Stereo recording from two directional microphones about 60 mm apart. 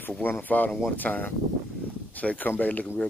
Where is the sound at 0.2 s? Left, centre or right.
Left.